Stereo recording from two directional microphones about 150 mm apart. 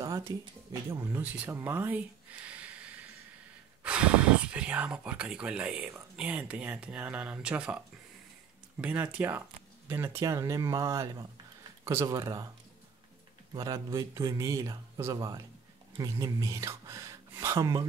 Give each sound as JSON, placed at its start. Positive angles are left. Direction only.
{"t": 0.3, "sound": "speech", "side_deg": -25}
{"t": 8.8, "sound": "speech", "side_deg": -10}
{"t": 13.5, "sound": "speech", "side_deg": -25}